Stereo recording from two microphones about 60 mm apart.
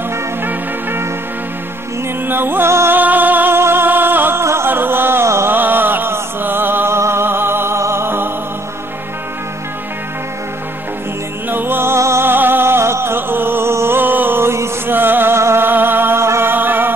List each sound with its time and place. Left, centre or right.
0.4 s music: right
2.2 s music: right
3.0 s music: right
4.4 s music: right
5.5 s music: right
11.5 s music: right
12.3 s music: right
15.0 s music: right
16.5 s music: right